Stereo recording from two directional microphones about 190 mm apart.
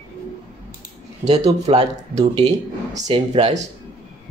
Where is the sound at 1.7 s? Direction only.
35° right (ahead or behind).